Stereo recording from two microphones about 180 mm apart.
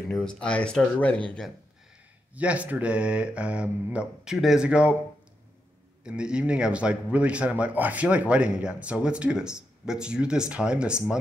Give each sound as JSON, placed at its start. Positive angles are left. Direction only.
{"t": 0.1, "sound": "speech", "side_deg": 5}
{"t": 2.3, "sound": "speech", "side_deg": -10}
{"t": 6.0, "sound": "speech", "side_deg": -5}